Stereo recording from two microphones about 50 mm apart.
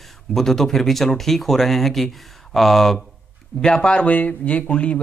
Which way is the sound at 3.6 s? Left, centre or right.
Centre.